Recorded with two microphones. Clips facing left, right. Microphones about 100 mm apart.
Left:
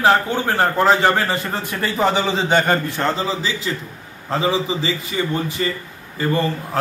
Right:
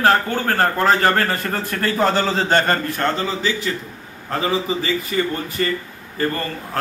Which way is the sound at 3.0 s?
30° left (ahead or behind).